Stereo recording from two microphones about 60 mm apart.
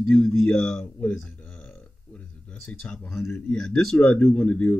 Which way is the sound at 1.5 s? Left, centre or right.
Left.